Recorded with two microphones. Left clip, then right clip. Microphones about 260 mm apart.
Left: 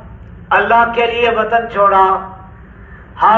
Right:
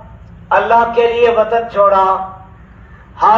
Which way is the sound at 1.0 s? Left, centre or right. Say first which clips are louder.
Right 3 dB; right.